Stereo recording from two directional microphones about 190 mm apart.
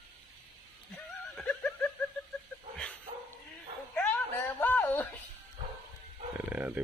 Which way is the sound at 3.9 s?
10° left (ahead or behind).